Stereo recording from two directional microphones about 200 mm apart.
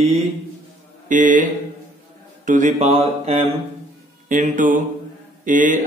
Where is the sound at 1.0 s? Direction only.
40° right (ahead or behind).